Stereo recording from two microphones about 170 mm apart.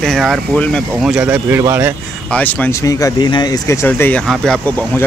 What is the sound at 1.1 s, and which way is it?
Speech, 10° right (ahead or behind).